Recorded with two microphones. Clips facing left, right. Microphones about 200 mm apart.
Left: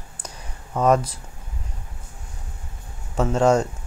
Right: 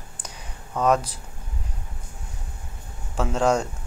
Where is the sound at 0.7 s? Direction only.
10° left (ahead or behind).